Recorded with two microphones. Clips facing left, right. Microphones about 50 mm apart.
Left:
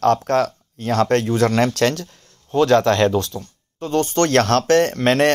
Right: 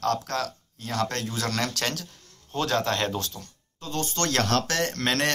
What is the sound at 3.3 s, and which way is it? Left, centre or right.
Speech, left.